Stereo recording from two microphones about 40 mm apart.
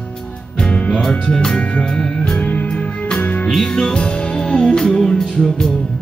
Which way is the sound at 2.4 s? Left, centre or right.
Left.